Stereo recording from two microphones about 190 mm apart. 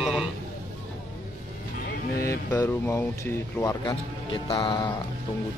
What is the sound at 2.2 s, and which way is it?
Speech, 10° left (ahead or behind).